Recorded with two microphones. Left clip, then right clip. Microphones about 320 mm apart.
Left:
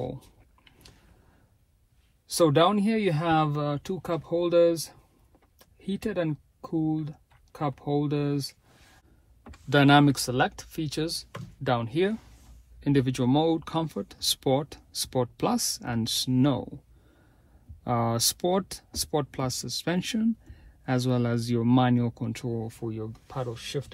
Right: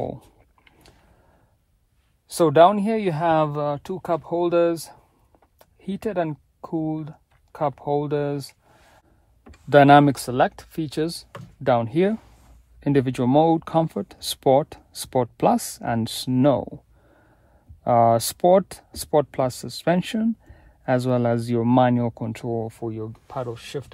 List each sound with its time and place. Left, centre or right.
2.2 s speech: right
9.7 s speech: right
17.8 s speech: right